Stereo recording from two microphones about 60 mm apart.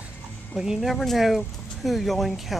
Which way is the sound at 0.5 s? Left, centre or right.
Centre.